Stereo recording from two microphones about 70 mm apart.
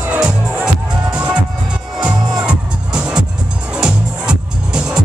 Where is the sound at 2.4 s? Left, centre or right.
Centre.